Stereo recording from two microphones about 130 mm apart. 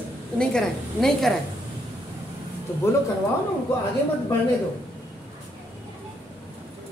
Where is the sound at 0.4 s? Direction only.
5° left (ahead or behind).